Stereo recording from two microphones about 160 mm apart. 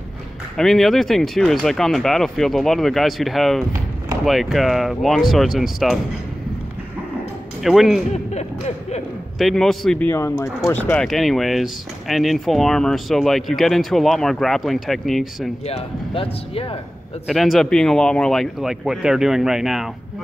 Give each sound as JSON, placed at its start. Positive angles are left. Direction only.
{"t": 0.6, "sound": "speech", "side_deg": 0}
{"t": 7.6, "sound": "speech", "side_deg": 0}
{"t": 8.1, "sound": "music", "side_deg": 45}
{"t": 9.4, "sound": "speech", "side_deg": 0}
{"t": 11.1, "sound": "speech", "side_deg": 0}
{"t": 15.6, "sound": "speech", "side_deg": 35}
{"t": 17.3, "sound": "speech", "side_deg": 0}